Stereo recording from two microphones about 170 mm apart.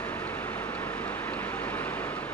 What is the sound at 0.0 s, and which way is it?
Vehicle, 10° left (ahead or behind).